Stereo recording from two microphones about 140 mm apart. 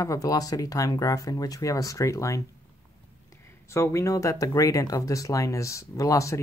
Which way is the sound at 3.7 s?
20° left (ahead or behind).